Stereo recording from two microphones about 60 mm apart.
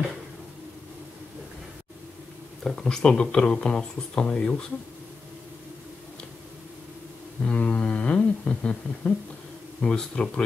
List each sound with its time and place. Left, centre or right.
2.6 s speech: centre
7.4 s a sound: centre
9.8 s speech: centre